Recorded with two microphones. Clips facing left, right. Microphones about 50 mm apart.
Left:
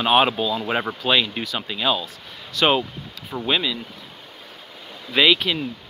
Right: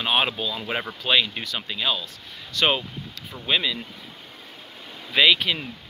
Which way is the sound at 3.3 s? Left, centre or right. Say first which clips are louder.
Left 13 dB; left.